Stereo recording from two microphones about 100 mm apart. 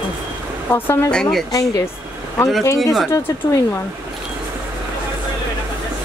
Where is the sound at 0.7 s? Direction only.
25° left (ahead or behind).